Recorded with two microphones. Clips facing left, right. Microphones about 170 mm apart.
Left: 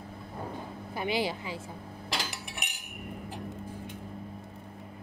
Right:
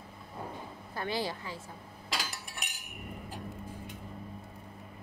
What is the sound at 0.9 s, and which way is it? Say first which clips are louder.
Speech: left 4 dB; 20° left (ahead or behind).